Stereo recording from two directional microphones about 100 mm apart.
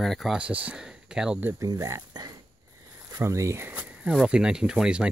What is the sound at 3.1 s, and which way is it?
Speech, 30° right (ahead or behind).